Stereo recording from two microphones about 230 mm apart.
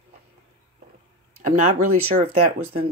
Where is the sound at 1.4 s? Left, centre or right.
Right.